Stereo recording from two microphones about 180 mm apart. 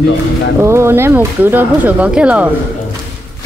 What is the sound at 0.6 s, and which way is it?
Speech, 15° right (ahead or behind).